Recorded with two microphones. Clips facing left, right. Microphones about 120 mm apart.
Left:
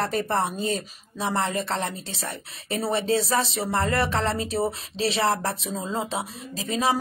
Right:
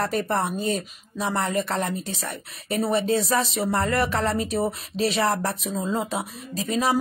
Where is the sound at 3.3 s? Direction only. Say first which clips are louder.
Right 1 dB; 30° left (ahead or behind).